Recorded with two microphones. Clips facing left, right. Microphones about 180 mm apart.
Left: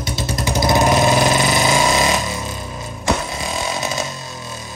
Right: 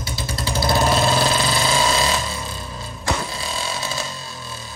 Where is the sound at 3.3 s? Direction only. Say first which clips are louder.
Left 4 dB; 20° left (ahead or behind).